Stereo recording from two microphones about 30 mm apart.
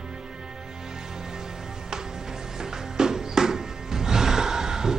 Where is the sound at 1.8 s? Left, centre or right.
Centre.